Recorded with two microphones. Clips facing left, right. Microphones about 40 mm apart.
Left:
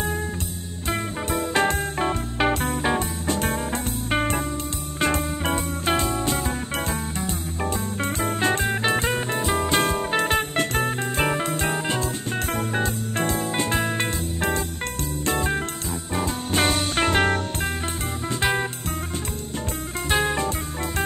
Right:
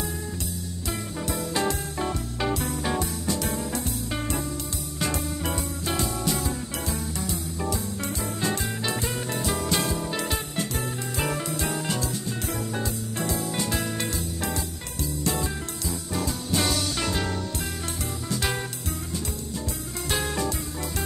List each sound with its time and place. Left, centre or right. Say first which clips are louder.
0.8 s music: left 5 dB; left
11.2 s music: left 3 dB; left
18.3 s music: left 6 dB; left
20.1 s music: left 5 dB; left